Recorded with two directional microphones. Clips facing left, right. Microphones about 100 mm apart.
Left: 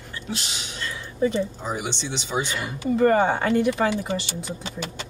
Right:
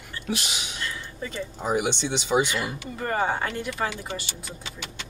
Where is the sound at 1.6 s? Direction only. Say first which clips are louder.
Right 4 dB; 15° right (ahead or behind).